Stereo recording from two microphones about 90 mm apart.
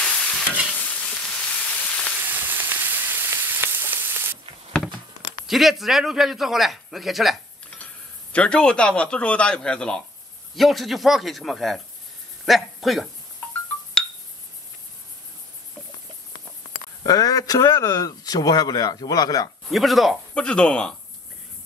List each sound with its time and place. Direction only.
0.0 s stir: 10° left (ahead or behind)
0.7 s frying: 15° left (ahead or behind)
2.2 s frying: 20° right (ahead or behind)
5.5 s a man's voice: centre (ahead or behind)
7.7 s a man's voice: 15° left (ahead or behind)
17.0 s speech: 45° left (ahead or behind)
17.8 s speech: 50° left (ahead or behind)
19.7 s a man's voice: centre (ahead or behind)
20.3 s speech: 10° left (ahead or behind)